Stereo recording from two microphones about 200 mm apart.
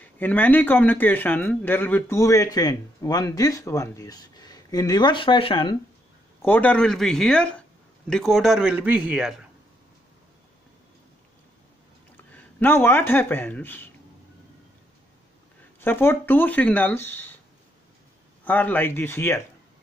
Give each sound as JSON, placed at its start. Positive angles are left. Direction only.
{"t": 0.2, "sound": "a man's voice", "side_deg": 10}
{"t": 6.4, "sound": "a man's voice", "side_deg": 10}
{"t": 12.3, "sound": "speech", "side_deg": 10}
{"t": 15.8, "sound": "a man's voice", "side_deg": 10}
{"t": 18.4, "sound": "a man's voice", "side_deg": 10}